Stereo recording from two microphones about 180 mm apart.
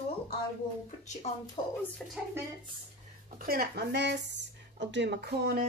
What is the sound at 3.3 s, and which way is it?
Speech, 55° right (ahead or behind).